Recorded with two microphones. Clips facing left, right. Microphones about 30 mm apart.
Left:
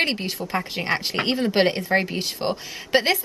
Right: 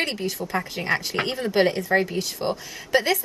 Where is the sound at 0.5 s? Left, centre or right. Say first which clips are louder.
Left 1 dB; left.